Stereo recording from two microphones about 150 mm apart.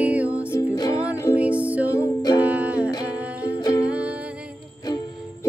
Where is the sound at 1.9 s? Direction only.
25° left (ahead or behind).